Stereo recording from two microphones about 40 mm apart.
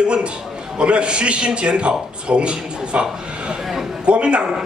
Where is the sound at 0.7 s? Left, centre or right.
Right.